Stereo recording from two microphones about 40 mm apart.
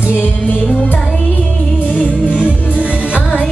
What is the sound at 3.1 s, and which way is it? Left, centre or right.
Music, left.